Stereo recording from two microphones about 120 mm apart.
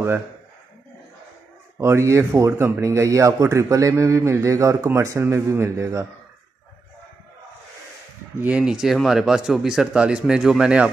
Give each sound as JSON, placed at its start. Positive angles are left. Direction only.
{"t": 1.8, "sound": "a man's voice", "side_deg": -25}
{"t": 8.4, "sound": "speech", "side_deg": -10}